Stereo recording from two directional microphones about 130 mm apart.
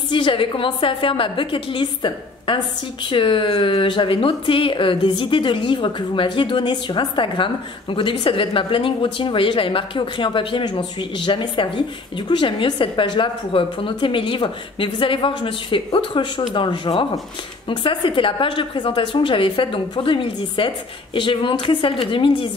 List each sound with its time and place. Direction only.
0.1 s speech: 40° left (ahead or behind)